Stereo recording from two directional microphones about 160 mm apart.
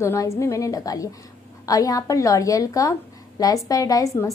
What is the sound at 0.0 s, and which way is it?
A woman's voice, 20° left (ahead or behind).